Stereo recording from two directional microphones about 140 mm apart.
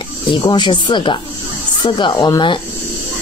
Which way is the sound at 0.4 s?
30° left (ahead or behind).